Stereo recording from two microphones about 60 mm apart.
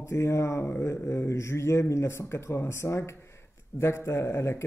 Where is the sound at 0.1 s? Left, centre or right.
Left.